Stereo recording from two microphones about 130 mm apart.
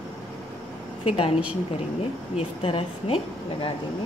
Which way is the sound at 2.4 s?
45° left (ahead or behind).